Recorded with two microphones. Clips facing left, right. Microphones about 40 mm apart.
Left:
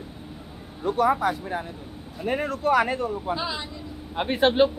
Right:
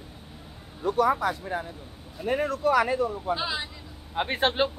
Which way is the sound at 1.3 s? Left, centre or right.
Centre.